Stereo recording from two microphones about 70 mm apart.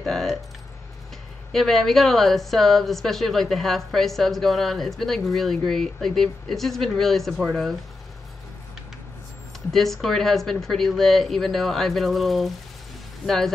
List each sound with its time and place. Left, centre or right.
0.0 s speech: centre
1.5 s speech: centre
9.7 s speech: centre